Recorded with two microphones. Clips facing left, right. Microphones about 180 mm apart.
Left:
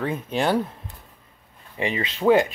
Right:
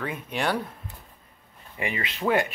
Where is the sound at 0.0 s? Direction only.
30° left (ahead or behind).